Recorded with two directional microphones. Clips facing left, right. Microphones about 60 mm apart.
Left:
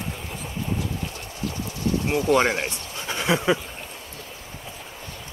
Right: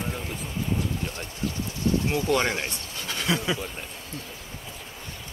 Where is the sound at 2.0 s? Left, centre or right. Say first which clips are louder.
Left 8 dB; left.